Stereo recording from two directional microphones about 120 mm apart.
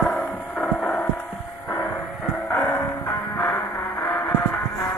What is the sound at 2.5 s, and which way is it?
Music, 20° left (ahead or behind).